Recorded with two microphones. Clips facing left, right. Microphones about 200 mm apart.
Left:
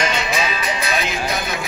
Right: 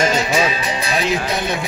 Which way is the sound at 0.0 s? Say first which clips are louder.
Right 5 dB; 40° right (ahead or behind).